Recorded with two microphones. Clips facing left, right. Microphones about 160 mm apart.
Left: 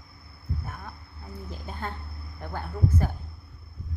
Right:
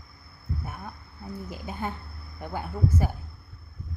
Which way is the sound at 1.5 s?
10° right (ahead or behind).